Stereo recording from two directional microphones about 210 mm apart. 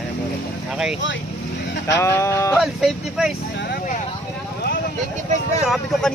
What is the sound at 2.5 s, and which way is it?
Speech, centre (ahead or behind).